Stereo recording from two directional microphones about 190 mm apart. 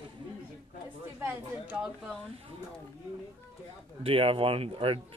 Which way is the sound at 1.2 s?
10° right (ahead or behind).